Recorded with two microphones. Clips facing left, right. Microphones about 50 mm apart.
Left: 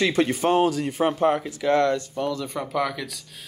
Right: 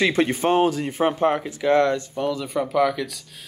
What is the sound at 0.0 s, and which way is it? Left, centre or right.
Speech, right.